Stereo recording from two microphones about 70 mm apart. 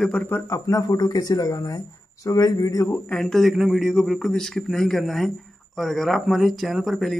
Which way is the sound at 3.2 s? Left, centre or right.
Centre.